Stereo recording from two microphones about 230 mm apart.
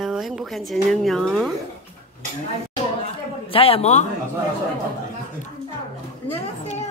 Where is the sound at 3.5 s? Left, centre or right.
Left.